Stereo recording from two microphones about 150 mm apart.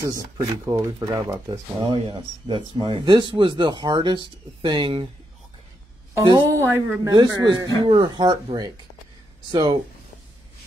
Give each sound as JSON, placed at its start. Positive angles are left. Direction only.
{"t": 0.4, "sound": "speech", "side_deg": -20}
{"t": 6.1, "sound": "speech", "side_deg": -20}